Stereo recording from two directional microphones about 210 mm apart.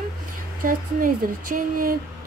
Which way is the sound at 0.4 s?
40° right (ahead or behind).